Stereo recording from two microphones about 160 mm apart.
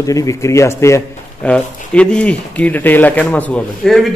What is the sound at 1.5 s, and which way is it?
A man's voice, 5° left (ahead or behind).